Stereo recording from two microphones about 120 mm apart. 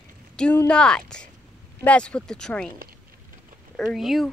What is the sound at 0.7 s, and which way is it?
Speech, 10° left (ahead or behind).